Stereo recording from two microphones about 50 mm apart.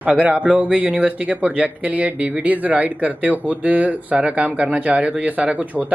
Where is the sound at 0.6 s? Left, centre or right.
Right.